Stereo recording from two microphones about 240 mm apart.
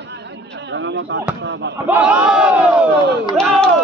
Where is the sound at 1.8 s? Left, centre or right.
Centre.